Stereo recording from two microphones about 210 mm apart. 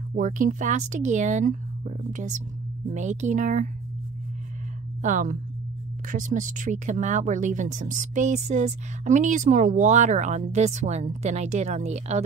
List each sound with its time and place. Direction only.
0.1 s speech: 40° right (ahead or behind)
5.0 s speech: 40° right (ahead or behind)